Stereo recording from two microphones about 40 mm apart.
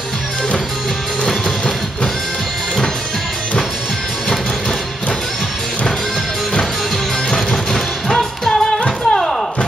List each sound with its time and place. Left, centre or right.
7.3 s music: centre